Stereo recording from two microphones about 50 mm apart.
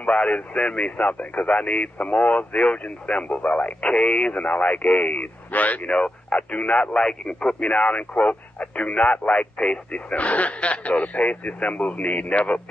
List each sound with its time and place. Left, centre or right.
0.0 s speech: left